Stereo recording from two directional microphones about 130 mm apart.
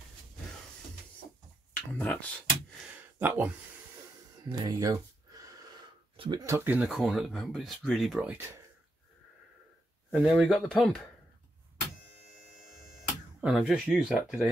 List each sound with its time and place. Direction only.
1.7 s speech: 10° left (ahead or behind)
3.2 s speech: 15° right (ahead or behind)
4.5 s speech: 30° right (ahead or behind)
6.1 s speech: 40° right (ahead or behind)
6.4 s speech: 20° right (ahead or behind)
6.8 s speech: centre (ahead or behind)
8.2 s speech: 10° right (ahead or behind)
10.1 s speech: centre (ahead or behind)
13.4 s speech: 5° right (ahead or behind)